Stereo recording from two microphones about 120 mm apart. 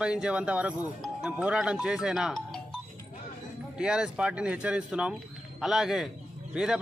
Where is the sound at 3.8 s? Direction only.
5° right (ahead or behind).